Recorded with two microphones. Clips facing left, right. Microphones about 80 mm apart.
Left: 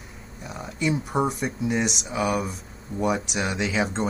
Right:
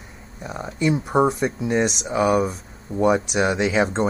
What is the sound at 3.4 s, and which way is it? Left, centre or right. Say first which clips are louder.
Speech: right 6 dB; right.